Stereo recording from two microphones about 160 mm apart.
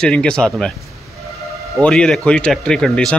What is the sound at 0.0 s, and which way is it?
Speech, 5° left (ahead or behind).